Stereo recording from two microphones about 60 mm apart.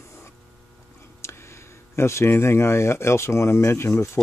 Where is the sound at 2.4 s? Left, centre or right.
Left.